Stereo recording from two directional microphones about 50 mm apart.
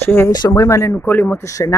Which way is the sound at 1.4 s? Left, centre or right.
Left.